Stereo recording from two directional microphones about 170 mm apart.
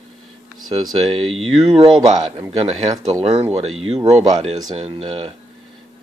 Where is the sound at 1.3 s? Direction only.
35° right (ahead or behind).